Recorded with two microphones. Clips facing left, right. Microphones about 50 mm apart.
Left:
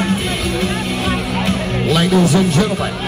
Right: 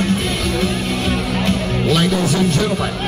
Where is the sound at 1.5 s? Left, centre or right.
Centre.